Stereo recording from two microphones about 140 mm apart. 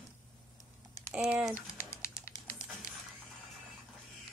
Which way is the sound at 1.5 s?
20° left (ahead or behind).